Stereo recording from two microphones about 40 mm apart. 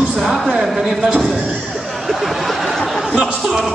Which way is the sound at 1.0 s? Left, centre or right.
Centre.